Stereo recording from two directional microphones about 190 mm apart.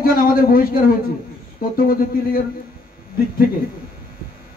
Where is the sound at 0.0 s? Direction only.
50° left (ahead or behind).